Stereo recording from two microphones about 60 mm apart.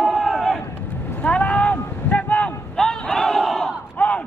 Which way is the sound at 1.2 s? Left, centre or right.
Left.